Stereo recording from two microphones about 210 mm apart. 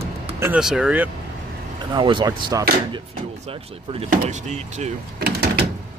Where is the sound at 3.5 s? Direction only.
30° right (ahead or behind).